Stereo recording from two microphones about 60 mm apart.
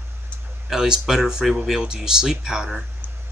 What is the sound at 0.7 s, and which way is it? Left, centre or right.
Speech, centre.